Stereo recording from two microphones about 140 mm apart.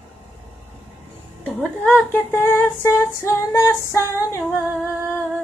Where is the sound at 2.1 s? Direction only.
15° left (ahead or behind).